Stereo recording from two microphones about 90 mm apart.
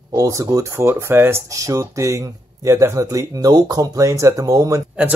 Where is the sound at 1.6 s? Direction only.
40° right (ahead or behind).